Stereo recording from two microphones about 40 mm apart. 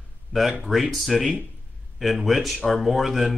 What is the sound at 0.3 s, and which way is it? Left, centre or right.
A man's voice, centre.